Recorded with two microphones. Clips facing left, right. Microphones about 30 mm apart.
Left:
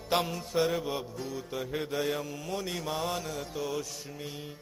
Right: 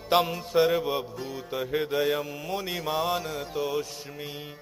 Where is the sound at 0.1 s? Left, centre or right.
Centre.